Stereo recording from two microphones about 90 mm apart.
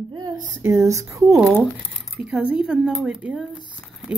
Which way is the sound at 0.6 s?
35° right (ahead or behind).